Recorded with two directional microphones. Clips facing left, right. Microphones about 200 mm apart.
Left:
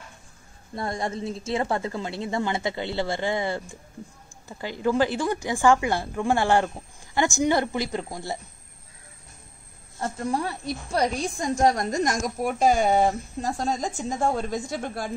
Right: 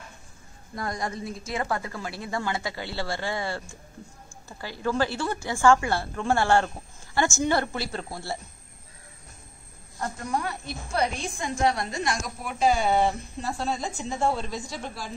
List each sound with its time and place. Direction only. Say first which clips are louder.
0.7 s a woman's voice: left 2 dB; 25° left (ahead or behind)
9.9 s a woman's voice: left 3 dB; 30° left (ahead or behind); by 15.1 s 55° left (ahead or behind)